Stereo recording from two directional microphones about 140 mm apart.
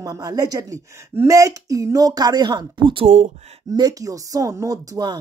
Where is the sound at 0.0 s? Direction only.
25° right (ahead or behind).